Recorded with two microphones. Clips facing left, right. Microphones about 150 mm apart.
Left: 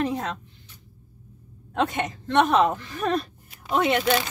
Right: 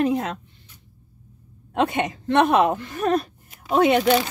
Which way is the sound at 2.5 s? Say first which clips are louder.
Right 2 dB; 15° right (ahead or behind).